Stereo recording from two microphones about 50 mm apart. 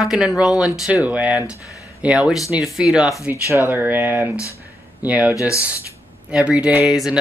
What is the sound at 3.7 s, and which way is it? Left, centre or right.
Speech, right.